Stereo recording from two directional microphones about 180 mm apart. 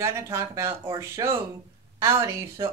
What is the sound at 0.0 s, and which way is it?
A woman's voice, 15° right (ahead or behind).